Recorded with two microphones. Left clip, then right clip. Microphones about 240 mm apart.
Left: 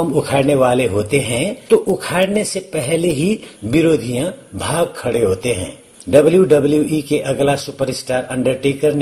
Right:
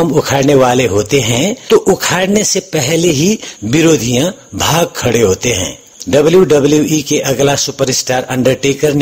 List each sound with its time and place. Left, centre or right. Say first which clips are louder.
0.2 s a man's voice: right 4 dB; right